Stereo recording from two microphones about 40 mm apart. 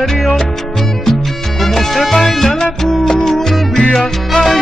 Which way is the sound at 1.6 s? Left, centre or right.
Centre.